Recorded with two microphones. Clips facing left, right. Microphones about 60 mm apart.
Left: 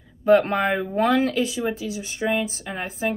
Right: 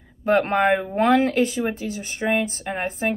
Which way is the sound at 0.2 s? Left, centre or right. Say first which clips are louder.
Left 1 dB; right.